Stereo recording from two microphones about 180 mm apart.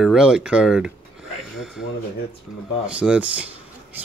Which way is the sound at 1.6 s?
Centre (ahead or behind).